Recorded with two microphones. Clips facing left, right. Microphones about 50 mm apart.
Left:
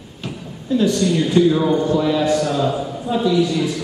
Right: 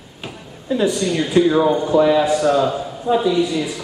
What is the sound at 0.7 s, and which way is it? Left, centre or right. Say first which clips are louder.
A man's voice: left 2 dB; centre.